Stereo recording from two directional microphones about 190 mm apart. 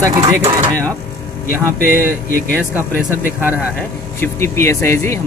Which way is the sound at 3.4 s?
10° right (ahead or behind).